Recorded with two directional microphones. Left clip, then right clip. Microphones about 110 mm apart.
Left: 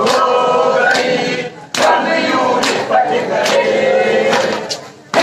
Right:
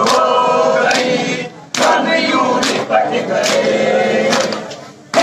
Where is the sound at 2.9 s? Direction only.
25° right (ahead or behind).